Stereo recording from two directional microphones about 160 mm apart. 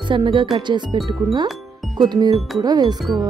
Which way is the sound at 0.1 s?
30° right (ahead or behind).